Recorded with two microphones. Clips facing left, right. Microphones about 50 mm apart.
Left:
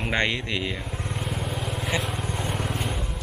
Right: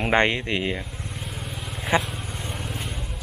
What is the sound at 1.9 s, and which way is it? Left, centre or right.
Speech, right.